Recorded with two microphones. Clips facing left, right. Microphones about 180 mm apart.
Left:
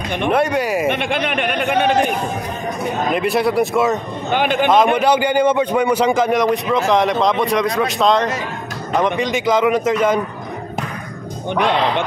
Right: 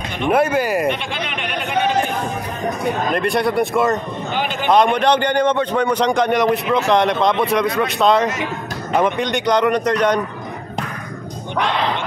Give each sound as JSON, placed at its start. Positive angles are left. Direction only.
{"t": 0.3, "sound": "a man's voice", "side_deg": 0}
{"t": 0.9, "sound": "speech", "side_deg": 55}
{"t": 3.1, "sound": "a man's voice", "side_deg": 0}
{"t": 4.3, "sound": "speech", "side_deg": 55}
{"t": 4.6, "sound": "a man's voice", "side_deg": 5}